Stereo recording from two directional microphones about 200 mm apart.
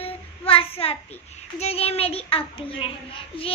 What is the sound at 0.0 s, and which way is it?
Child singing, 30° left (ahead or behind).